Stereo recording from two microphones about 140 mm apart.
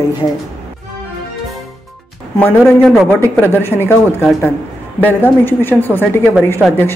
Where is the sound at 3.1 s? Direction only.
15° left (ahead or behind).